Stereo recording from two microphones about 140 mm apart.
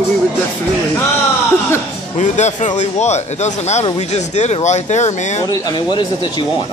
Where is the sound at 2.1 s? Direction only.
55° left (ahead or behind).